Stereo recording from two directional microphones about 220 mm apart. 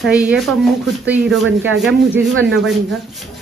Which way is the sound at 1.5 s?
60° right (ahead or behind).